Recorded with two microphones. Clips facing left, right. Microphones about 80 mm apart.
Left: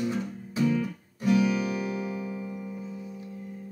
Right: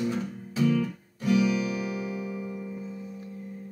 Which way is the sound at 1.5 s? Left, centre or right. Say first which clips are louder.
Even; left.